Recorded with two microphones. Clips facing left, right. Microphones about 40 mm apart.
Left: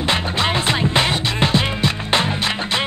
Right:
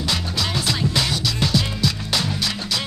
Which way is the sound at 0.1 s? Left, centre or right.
Left.